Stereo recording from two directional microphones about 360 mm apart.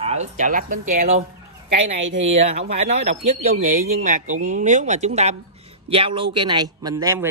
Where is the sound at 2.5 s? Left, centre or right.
Centre.